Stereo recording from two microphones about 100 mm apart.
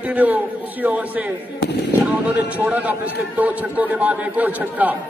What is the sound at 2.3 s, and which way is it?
A man's voice, 15° right (ahead or behind).